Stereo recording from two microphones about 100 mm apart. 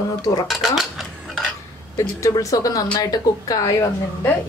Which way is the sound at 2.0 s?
35° left (ahead or behind).